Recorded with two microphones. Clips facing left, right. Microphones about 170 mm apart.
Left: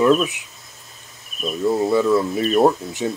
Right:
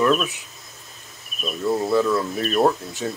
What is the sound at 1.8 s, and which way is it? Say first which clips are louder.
Speech: left 3 dB; 10° left (ahead or behind).